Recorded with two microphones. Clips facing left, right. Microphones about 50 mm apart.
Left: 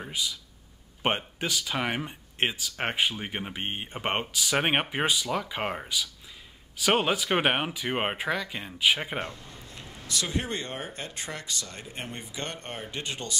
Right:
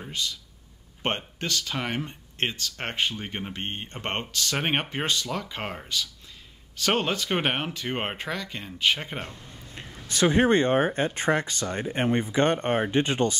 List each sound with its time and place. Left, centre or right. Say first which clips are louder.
0.0 s speech: even; centre
9.8 s speech: right 8 dB; right